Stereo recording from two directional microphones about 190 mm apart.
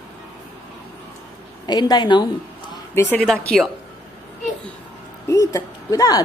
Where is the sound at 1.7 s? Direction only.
20° left (ahead or behind).